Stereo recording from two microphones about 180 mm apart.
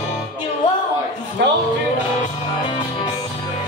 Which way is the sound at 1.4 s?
70° right (ahead or behind).